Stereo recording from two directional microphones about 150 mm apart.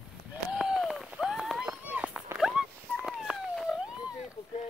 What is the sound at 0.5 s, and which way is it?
Run, 5° right (ahead or behind).